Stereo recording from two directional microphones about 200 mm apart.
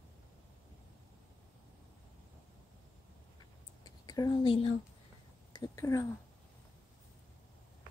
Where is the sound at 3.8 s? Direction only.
20° left (ahead or behind).